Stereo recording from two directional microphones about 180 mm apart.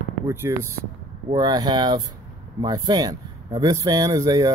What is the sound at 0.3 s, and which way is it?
Speech, 15° right (ahead or behind).